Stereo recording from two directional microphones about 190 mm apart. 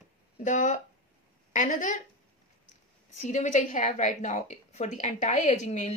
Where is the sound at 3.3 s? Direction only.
40° left (ahead or behind).